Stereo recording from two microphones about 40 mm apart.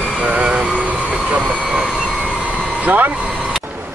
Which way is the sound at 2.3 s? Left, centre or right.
Left.